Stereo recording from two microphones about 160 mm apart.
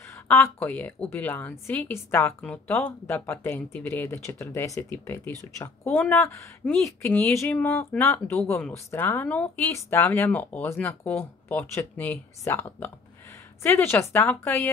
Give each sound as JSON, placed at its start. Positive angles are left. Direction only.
{"t": 0.3, "sound": "a woman's voice", "side_deg": 10}